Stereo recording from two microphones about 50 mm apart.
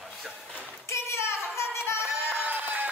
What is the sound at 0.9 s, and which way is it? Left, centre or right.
Child singing, left.